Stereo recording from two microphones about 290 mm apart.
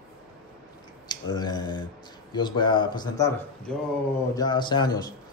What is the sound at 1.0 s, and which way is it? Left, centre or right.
A man's voice, centre.